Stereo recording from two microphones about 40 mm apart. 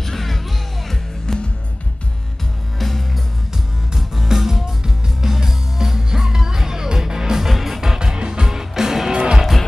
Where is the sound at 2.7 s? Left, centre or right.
Centre.